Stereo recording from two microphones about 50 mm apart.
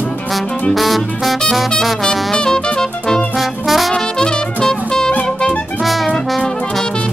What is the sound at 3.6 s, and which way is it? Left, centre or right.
Trumpet, centre.